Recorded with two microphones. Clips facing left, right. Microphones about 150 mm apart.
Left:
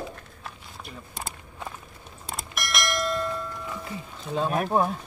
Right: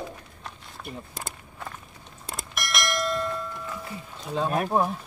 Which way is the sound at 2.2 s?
Centre (ahead or behind).